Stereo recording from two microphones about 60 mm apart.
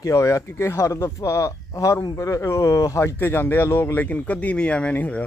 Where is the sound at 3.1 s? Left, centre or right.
Left.